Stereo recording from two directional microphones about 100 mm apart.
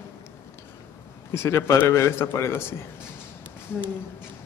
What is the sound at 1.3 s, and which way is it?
Speech, 25° left (ahead or behind).